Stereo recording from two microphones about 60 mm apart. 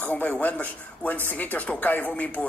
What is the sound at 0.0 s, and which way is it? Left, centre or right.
Speech, left.